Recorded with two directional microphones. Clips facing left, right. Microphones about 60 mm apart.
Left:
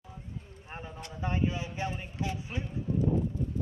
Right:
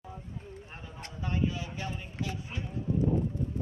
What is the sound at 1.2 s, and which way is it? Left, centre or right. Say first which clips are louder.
A man's voice: left 1 dB; left.